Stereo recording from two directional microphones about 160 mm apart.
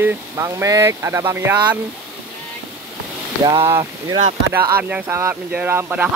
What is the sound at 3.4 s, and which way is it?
Speech, 35° right (ahead or behind).